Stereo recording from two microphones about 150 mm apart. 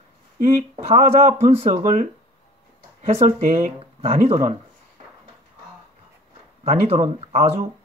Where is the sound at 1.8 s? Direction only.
60° right (ahead or behind); by 4.6 s 45° right (ahead or behind).